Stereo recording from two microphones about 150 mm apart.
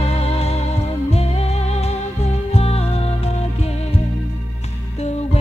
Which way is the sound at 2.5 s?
40° left (ahead or behind).